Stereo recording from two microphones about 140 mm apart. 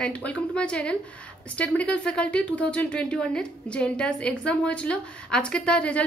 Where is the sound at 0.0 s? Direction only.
10° left (ahead or behind).